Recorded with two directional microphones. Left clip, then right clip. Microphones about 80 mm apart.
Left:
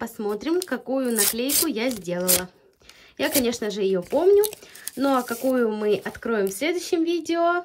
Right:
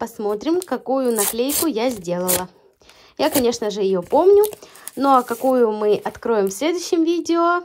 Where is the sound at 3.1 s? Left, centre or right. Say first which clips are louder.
Right 5 dB; right.